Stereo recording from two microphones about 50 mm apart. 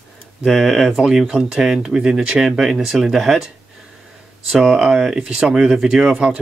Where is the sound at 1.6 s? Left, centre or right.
Centre.